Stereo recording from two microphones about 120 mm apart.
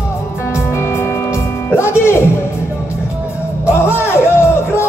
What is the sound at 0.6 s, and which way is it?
Music, 20° left (ahead or behind).